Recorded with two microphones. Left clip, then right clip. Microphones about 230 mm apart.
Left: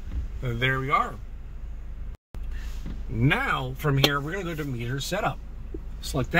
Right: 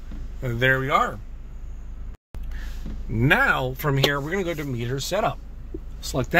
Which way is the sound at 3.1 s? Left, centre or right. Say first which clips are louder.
Right 6 dB; right.